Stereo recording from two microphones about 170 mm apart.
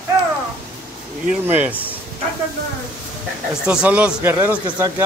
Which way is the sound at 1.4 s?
10° right (ahead or behind).